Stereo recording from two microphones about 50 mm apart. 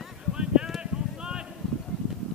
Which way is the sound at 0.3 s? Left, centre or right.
Centre.